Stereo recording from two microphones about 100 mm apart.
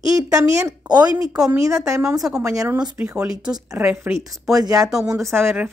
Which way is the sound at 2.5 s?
35° right (ahead or behind).